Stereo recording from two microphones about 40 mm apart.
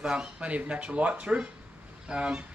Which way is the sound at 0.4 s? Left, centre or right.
Right.